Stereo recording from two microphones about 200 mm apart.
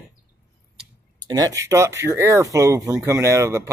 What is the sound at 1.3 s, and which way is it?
Speech, 20° right (ahead or behind).